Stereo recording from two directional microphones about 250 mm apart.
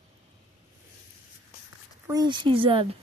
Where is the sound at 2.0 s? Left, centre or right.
Centre.